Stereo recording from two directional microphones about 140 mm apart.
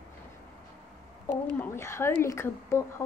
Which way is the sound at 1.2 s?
15° left (ahead or behind).